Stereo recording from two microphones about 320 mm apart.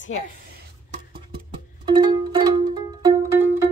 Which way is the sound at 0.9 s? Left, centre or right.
Centre.